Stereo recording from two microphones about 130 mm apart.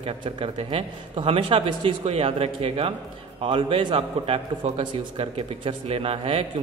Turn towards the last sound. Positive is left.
turn(degrees=-45)  # may be behind; listen again after turning